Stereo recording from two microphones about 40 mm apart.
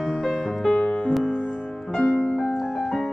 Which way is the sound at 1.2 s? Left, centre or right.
Left.